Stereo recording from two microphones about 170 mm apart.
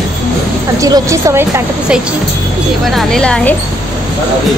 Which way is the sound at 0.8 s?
20° right (ahead or behind).